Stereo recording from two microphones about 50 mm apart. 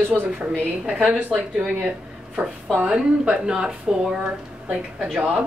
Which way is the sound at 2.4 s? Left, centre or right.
Centre.